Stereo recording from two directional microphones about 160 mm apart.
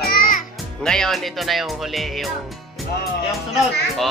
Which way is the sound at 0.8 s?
5° left (ahead or behind).